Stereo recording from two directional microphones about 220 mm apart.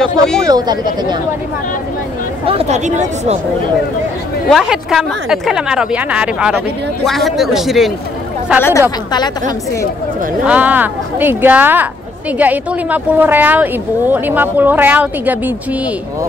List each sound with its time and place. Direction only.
0.5 s speech: 20° right (ahead or behind)
2.4 s speech: 30° right (ahead or behind)
4.5 s a woman's voice: centre (ahead or behind)
8.5 s a woman's voice: 10° left (ahead or behind)
10.4 s speech: 5° right (ahead or behind)